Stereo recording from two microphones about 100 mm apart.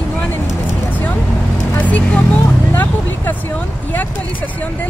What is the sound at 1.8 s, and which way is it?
Speech, 15° left (ahead or behind).